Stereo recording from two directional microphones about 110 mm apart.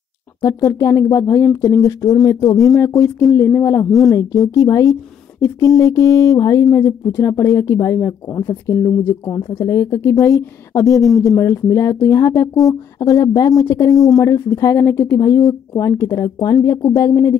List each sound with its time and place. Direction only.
0.4 s a woman's voice: 30° left (ahead or behind)
9.7 s a woman's voice: 30° left (ahead or behind)